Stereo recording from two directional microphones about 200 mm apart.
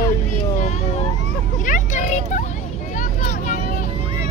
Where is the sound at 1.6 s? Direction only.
40° left (ahead or behind).